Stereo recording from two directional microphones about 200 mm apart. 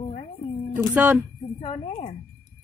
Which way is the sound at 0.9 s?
5° right (ahead or behind).